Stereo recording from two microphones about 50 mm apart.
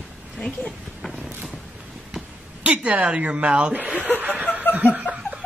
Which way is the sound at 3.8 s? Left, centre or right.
Right.